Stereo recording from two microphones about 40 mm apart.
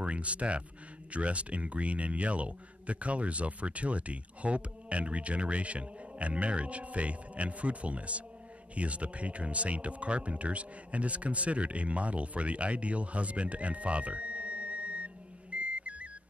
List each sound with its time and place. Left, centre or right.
0.0 s speech: right
15.5 s music: right